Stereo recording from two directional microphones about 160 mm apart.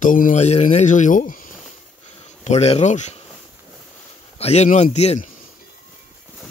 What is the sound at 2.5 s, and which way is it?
Speech, 40° left (ahead or behind).